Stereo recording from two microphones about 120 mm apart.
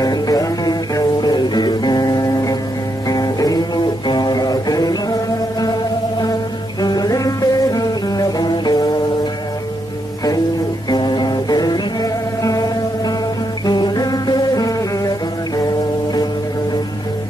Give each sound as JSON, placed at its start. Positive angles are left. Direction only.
{"t": 0.0, "sound": "music", "side_deg": 30}
{"t": 6.8, "sound": "music", "side_deg": 35}
{"t": 10.9, "sound": "music", "side_deg": 35}